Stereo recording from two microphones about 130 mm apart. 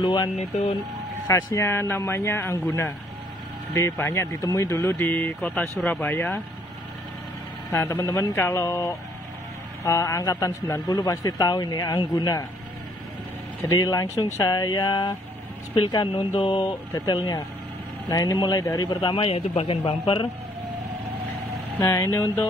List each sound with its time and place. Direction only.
0.0 s speech: 35° left (ahead or behind)
0.4 s a man's voice: 50° left (ahead or behind)
1.2 s a man's voice: 25° left (ahead or behind)
7.7 s speech: 15° left (ahead or behind)
8.0 s a man's voice: 30° left (ahead or behind)
13.7 s a man's voice: 30° left (ahead or behind)
21.7 s a man's voice: 25° left (ahead or behind)